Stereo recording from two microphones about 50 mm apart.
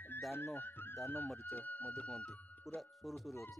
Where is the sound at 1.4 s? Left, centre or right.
Left.